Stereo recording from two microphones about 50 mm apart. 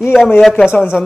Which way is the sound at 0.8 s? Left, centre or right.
Centre.